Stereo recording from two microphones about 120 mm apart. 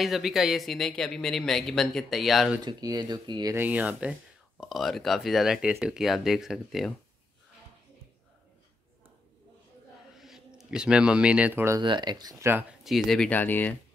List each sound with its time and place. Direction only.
0.0 s speech: centre (ahead or behind)
2.6 s speech: 35° right (ahead or behind)
3.5 s speech: 15° right (ahead or behind)
4.6 s speech: centre (ahead or behind)
10.1 s speech: centre (ahead or behind); by 11.8 s 20° right (ahead or behind)
11.8 s speech: 40° right (ahead or behind)
12.8 s speech: centre (ahead or behind)
13.3 s speech: 15° left (ahead or behind)